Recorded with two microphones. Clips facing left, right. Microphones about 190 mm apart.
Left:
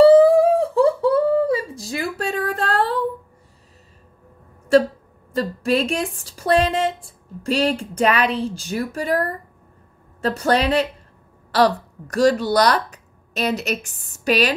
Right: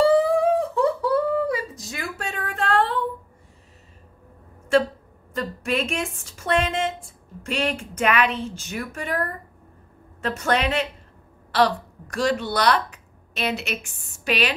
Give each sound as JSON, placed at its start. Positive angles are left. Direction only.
{"t": 0.0, "sound": "humming", "side_deg": 35}
{"t": 5.3, "sound": "speech", "side_deg": 35}